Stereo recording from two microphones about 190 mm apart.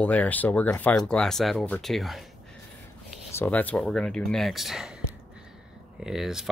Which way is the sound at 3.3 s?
10° left (ahead or behind).